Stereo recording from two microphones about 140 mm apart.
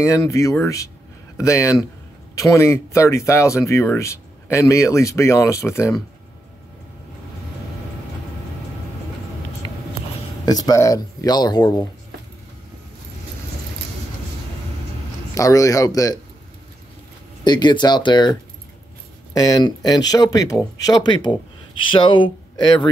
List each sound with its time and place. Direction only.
0.0 s speech: 20° left (ahead or behind)
10.4 s speech: 25° left (ahead or behind)
15.3 s speech: 25° left (ahead or behind)
17.5 s speech: 30° left (ahead or behind)